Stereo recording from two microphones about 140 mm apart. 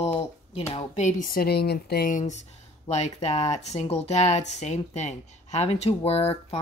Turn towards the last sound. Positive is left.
turn(degrees=45)  # may be behind; listen again after turning